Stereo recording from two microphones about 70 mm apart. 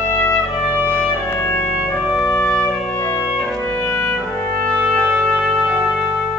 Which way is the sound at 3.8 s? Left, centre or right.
Left.